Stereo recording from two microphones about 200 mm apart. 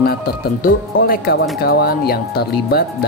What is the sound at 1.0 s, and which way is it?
Speech, 50° left (ahead or behind).